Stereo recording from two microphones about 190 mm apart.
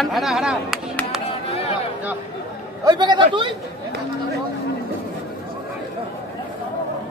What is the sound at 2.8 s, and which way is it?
Speech, 20° right (ahead or behind).